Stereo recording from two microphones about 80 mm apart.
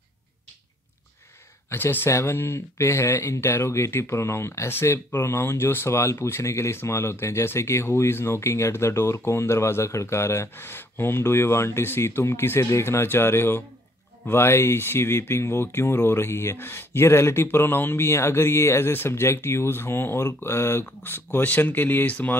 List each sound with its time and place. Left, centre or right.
1.7 s speech: left